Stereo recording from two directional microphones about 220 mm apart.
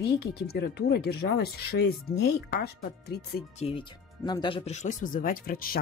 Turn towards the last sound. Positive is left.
turn(degrees=40)  # may be behind; listen again after turning